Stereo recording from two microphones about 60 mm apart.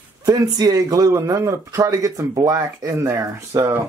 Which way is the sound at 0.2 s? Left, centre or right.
Right.